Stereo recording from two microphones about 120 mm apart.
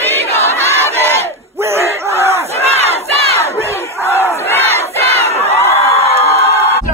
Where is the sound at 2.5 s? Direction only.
60° right (ahead or behind).